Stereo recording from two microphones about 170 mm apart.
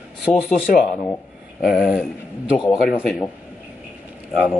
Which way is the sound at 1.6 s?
5° right (ahead or behind).